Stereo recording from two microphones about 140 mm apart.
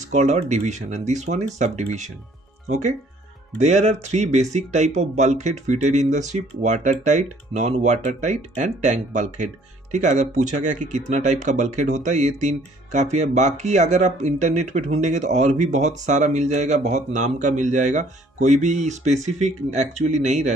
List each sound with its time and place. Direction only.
0.1 s speech: 55° right (ahead or behind)
3.5 s speech: 55° right (ahead or behind)